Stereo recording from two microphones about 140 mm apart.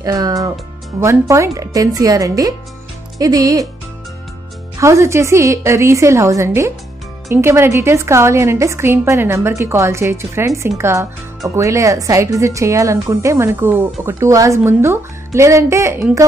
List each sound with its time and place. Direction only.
0.0 s speech: 25° right (ahead or behind)
4.7 s speech: 20° right (ahead or behind)